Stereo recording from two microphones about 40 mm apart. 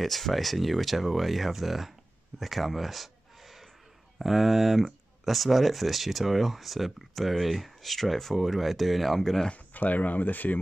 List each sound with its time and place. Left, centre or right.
0.0 s speech: centre
2.4 s a sound: centre
4.2 s speech: centre
9.8 s speech: left